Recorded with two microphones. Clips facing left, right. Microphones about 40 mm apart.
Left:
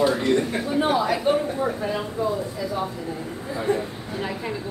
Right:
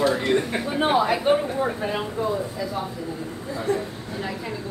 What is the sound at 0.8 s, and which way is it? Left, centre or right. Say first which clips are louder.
A man's voice: right 2 dB; right.